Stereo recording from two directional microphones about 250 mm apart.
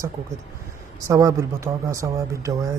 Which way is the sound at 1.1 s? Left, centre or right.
Centre.